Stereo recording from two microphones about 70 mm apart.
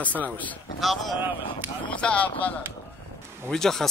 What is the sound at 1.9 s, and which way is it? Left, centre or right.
Speech, centre.